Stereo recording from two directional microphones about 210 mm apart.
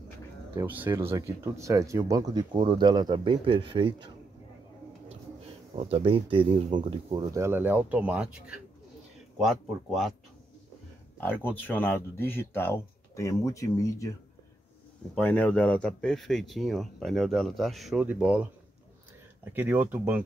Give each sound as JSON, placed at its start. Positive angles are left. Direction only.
{"t": 0.6, "sound": "speech", "side_deg": -10}
{"t": 5.8, "sound": "speech", "side_deg": -30}
{"t": 11.1, "sound": "speech", "side_deg": 10}
{"t": 15.1, "sound": "speech", "side_deg": 5}
{"t": 19.5, "sound": "speech", "side_deg": -10}